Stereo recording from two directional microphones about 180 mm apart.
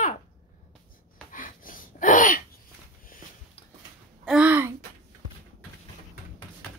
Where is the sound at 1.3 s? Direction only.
50° left (ahead or behind).